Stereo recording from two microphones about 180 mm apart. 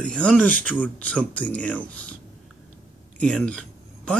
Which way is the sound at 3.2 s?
5° left (ahead or behind).